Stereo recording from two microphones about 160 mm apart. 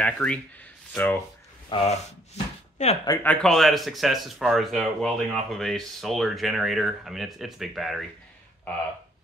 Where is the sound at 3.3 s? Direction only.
Centre (ahead or behind).